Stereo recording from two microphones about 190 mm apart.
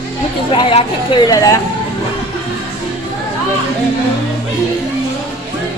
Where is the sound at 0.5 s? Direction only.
30° left (ahead or behind).